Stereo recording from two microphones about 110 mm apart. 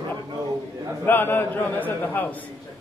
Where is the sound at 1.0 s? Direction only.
20° left (ahead or behind).